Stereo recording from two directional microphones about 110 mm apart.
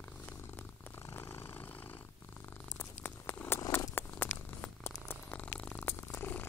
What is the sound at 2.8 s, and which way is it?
Patter, 20° left (ahead or behind).